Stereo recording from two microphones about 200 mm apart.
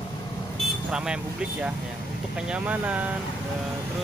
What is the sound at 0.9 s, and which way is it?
Speech, 5° right (ahead or behind).